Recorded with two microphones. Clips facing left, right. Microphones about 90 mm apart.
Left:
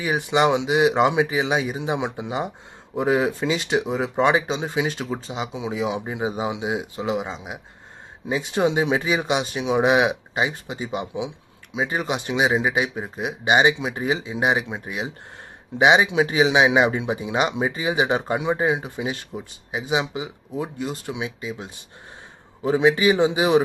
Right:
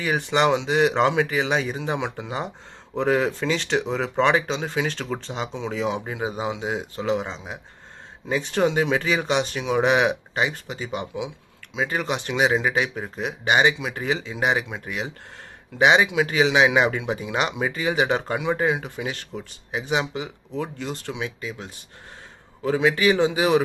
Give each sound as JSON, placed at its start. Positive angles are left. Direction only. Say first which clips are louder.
{"t": 0.0, "sound": "speech", "louder": "left 1 dB", "side_deg": 10}